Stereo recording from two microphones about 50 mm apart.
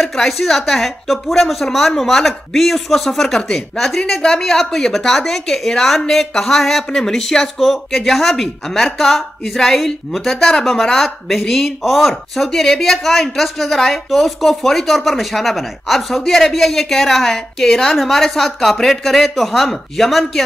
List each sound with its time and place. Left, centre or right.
0.1 s speech: centre
3.3 s speech: centre
3.7 s speech: centre